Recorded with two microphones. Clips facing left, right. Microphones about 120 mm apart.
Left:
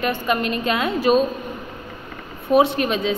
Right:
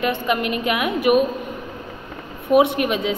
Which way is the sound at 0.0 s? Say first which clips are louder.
Even; 20° right (ahead or behind).